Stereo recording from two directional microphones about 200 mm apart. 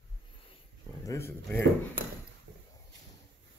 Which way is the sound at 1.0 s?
15° left (ahead or behind).